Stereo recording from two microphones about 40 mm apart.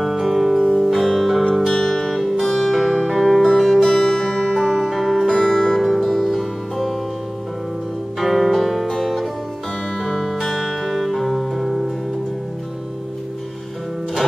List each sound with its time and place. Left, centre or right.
0.0 s music: centre
1.7 s music: centre
2.1 s music: centre
3.8 s music: centre
4.8 s music: centre
5.3 s music: centre
5.8 s music: centre
8.2 s music: centre
9.9 s music: centre
10.6 s music: centre